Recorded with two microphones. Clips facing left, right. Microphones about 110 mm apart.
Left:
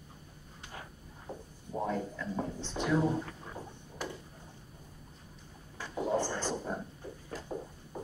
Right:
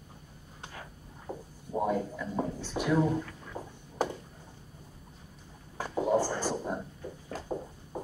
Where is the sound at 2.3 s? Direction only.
10° right (ahead or behind).